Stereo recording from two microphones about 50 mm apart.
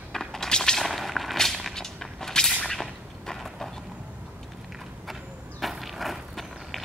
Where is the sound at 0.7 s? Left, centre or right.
Centre.